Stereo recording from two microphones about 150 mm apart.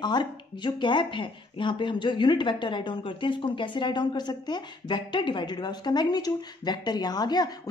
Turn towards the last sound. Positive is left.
turn(degrees=25)  # may be behind; listen again after turning